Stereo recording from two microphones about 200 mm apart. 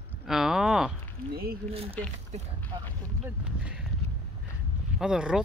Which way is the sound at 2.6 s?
10° left (ahead or behind).